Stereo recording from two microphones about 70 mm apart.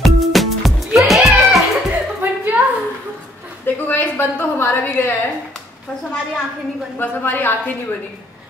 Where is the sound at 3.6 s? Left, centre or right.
Left.